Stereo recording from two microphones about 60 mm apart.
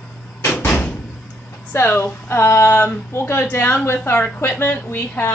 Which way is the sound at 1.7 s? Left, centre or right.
Left.